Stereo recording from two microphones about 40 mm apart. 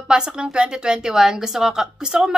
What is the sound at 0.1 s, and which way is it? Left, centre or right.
A woman's voice, right.